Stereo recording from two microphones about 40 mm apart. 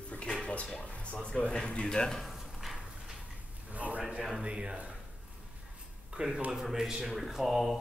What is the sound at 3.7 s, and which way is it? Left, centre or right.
Speech, right.